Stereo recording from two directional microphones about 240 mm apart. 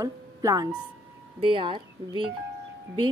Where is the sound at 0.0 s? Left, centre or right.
Centre.